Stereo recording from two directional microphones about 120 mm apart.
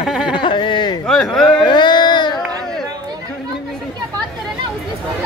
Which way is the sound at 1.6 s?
40° left (ahead or behind).